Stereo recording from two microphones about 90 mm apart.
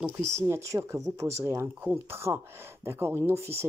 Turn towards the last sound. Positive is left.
turn(degrees=-30)  # may be behind; listen again after turning